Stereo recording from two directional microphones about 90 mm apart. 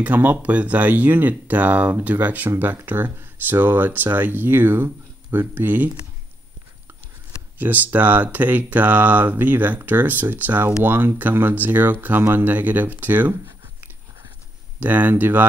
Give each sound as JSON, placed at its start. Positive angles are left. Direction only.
{"t": 0.0, "sound": "speech", "side_deg": -20}
{"t": 7.5, "sound": "speech", "side_deg": -20}
{"t": 14.8, "sound": "speech", "side_deg": -20}